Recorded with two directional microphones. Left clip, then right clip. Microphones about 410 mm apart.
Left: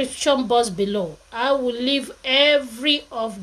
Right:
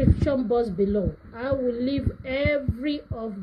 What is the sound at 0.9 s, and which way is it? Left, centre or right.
Speech, left.